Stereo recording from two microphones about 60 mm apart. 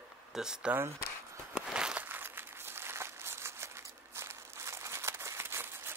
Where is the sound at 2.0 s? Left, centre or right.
Right.